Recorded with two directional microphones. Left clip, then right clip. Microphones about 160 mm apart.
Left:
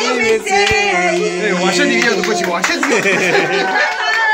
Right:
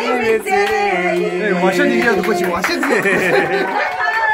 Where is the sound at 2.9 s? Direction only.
10° left (ahead or behind).